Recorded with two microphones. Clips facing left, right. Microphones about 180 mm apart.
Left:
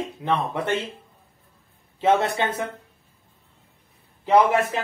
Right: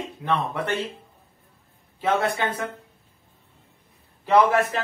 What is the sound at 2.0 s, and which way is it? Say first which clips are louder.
Speech: left 3 dB; 25° left (ahead or behind).